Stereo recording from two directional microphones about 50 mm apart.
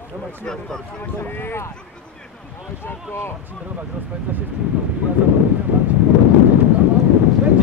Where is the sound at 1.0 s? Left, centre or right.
Left.